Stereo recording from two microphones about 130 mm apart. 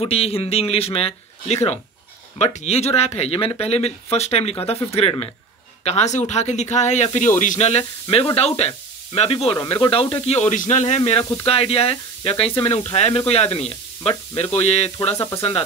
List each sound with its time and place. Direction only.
0.0 s speech: 50° left (ahead or behind)
5.9 s speech: 60° left (ahead or behind)
7.2 s speech: 75° left (ahead or behind)
11.0 s speech: 45° left (ahead or behind)
15.1 s speech: 25° left (ahead or behind)